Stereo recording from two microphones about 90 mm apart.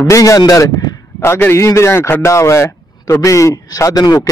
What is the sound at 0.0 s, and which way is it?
A man's voice, 40° left (ahead or behind).